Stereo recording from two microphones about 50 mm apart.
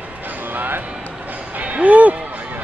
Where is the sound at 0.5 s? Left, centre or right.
Right.